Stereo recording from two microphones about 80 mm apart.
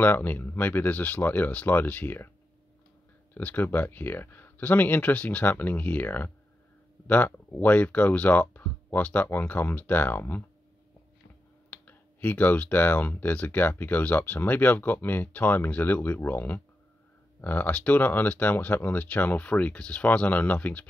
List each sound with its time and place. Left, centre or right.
0.0 s speech: left
3.3 s speech: left
11.7 s speech: left